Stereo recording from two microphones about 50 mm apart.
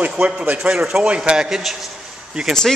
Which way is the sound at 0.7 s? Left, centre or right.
Centre.